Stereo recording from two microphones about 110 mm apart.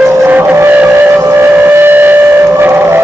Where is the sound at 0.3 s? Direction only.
20° right (ahead or behind).